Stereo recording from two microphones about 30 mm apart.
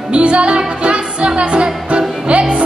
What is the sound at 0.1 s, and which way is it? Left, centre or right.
Music, right.